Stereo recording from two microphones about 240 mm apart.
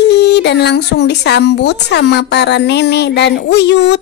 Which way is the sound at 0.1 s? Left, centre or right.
Left.